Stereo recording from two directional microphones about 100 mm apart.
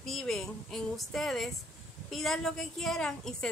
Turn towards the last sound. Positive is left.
turn(degrees=5)  # may be behind; listen again after turning